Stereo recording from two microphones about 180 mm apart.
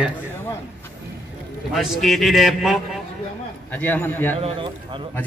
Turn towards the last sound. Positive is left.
turn(degrees=-30)  # may be behind; listen again after turning